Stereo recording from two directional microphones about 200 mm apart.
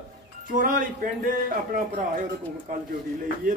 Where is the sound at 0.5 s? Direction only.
45° right (ahead or behind).